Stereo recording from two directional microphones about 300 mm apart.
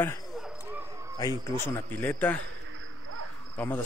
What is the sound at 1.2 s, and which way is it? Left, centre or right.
A man's voice, centre.